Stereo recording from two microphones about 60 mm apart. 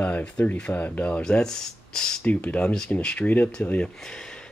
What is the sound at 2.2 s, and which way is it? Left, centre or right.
Speech, left.